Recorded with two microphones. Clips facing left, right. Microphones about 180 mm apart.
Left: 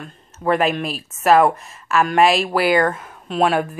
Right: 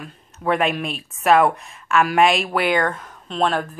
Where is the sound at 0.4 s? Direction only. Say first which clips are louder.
Left 2 dB; centre (ahead or behind).